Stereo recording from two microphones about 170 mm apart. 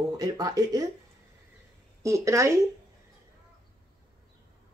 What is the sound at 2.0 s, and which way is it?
Speech, 20° right (ahead or behind).